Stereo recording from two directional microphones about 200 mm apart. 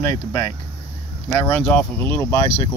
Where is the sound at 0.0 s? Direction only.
15° left (ahead or behind).